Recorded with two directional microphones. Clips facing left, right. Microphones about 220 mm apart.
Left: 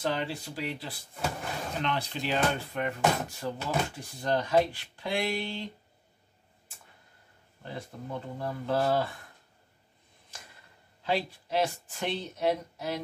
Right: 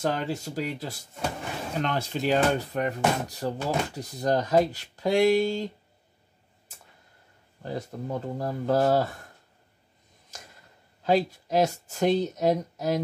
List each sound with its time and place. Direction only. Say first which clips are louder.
0.0 s speech: right 3 dB; 45° right (ahead or behind)
7.6 s speech: right 7 dB; 40° right (ahead or behind)
11.0 s speech: right 7 dB; 45° right (ahead or behind)